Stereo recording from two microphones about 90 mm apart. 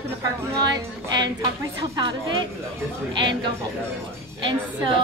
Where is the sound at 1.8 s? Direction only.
55° right (ahead or behind).